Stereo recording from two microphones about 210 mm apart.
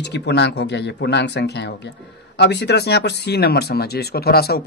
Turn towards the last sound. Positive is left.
turn(degrees=50)  # may be behind; listen again after turning